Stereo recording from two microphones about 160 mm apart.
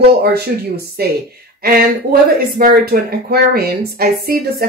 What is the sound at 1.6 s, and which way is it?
Speech, 65° right (ahead or behind).